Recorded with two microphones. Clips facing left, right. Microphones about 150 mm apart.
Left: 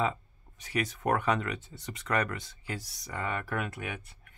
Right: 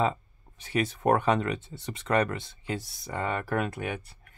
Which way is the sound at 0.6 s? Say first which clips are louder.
Right 4 dB; 30° right (ahead or behind).